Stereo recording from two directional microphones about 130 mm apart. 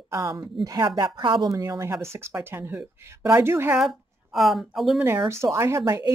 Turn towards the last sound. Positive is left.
turn(degrees=-25)  # may be behind; listen again after turning